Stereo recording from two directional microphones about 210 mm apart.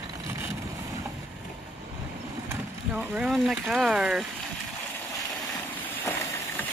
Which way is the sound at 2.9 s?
5° right (ahead or behind).